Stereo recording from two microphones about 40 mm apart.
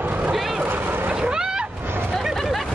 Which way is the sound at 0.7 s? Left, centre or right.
Right.